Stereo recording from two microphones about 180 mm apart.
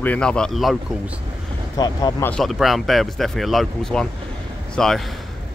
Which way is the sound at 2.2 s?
Centre (ahead or behind).